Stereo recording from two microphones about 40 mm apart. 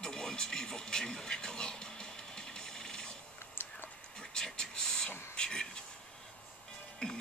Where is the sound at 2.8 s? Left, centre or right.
Centre.